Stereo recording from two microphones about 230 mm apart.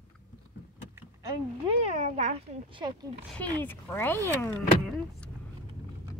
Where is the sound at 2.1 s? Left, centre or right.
Right.